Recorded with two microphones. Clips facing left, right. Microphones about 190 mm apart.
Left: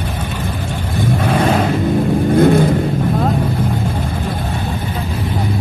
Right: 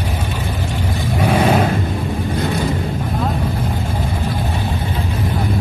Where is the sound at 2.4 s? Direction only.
50° left (ahead or behind).